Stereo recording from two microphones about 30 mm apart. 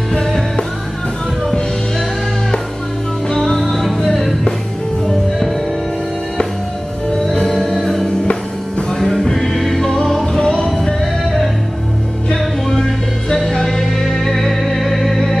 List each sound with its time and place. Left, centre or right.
3.5 s music: centre
7.3 s music: left
8.1 s music: left
9.0 s music: left
9.5 s music: centre
9.8 s music: centre
11.2 s music: centre
12.7 s music: left